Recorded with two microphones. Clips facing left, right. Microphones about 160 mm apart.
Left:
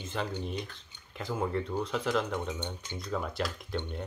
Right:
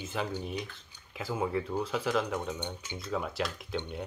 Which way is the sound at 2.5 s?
15° right (ahead or behind).